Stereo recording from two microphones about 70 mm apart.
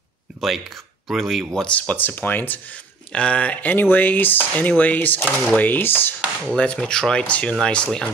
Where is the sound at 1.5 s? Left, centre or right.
Centre.